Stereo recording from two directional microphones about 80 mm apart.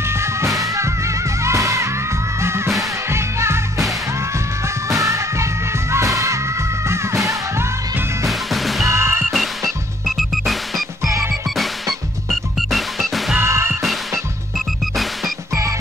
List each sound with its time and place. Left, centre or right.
0.0 s music: right
4.8 s music: right
8.3 s music: centre
8.8 s music: right
9.3 s music: centre
12.3 s music: centre
13.4 s music: right